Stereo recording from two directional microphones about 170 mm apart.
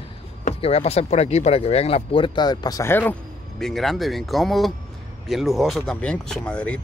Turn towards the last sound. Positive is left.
turn(degrees=5)  # may be behind; listen again after turning